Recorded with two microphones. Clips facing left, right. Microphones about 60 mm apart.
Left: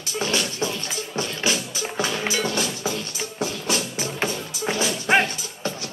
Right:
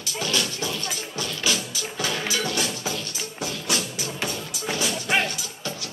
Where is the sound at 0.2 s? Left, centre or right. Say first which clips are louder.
Left 2 dB; left.